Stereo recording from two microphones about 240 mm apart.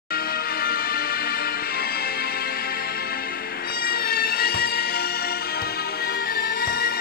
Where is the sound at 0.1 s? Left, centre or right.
Left.